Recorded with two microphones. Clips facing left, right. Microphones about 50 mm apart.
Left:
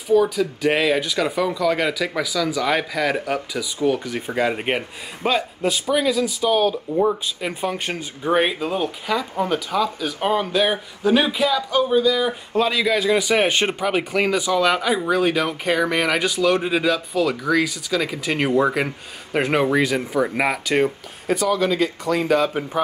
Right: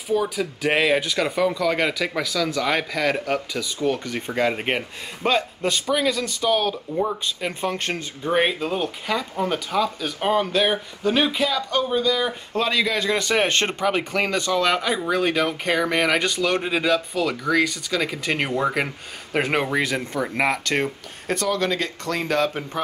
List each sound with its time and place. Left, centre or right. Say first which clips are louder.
0.1 s speech: left 5 dB; centre